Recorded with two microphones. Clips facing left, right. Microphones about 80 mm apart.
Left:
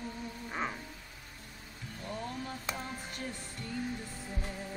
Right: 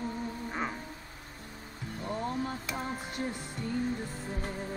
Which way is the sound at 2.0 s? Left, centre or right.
Right.